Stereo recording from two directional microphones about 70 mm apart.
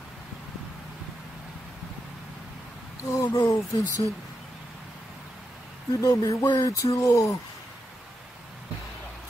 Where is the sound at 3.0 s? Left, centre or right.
Left.